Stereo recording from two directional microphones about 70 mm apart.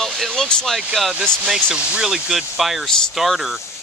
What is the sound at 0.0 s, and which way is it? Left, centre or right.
Speech, centre.